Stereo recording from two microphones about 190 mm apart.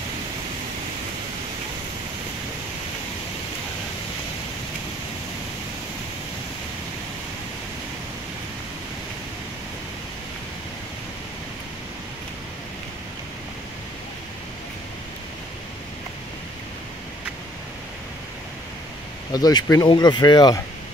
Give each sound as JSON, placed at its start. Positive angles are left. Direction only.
{"t": 19.3, "sound": "speech", "side_deg": 20}